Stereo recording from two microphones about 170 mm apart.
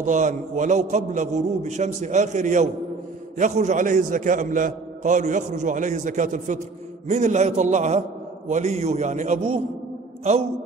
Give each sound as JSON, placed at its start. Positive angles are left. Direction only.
{"t": 0.0, "sound": "a man's voice", "side_deg": -50}